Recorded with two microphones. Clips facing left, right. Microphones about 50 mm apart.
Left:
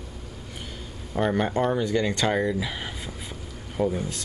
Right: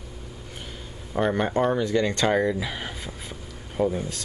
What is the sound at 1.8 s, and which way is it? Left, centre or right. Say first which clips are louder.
Speech: right 1 dB; centre.